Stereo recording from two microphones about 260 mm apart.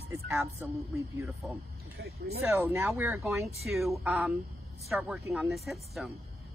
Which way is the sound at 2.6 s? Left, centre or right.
Centre.